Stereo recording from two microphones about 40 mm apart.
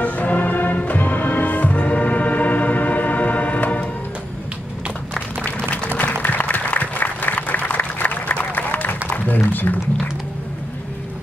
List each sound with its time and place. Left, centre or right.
0.0 s music: left
5.4 s music: left
5.9 s applause: left
9.1 s a sound: left
9.5 s music: left